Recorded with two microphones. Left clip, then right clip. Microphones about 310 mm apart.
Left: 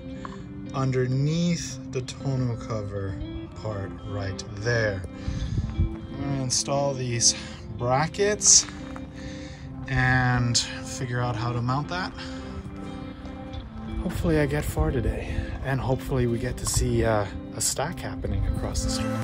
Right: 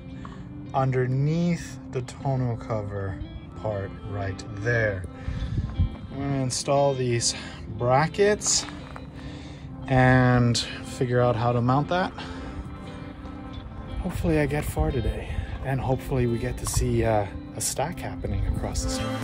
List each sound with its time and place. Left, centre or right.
0.7 s speech: centre
6.1 s speech: centre
9.8 s speech: centre
14.0 s speech: centre